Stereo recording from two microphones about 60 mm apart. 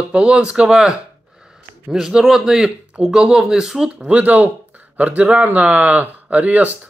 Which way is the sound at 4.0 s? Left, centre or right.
Right.